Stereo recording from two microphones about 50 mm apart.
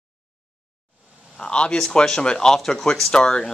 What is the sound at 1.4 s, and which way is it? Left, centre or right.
Speech, centre.